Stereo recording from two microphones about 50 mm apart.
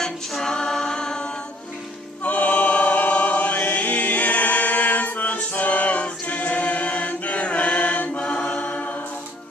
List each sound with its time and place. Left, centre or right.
0.0 s choir: centre
2.2 s choir: left
8.5 s a capella: left